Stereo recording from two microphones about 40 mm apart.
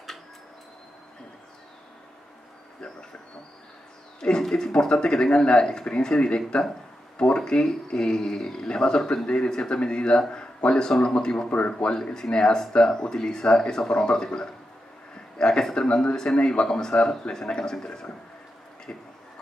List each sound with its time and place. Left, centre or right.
4.2 s speech: centre
18.9 s speech: left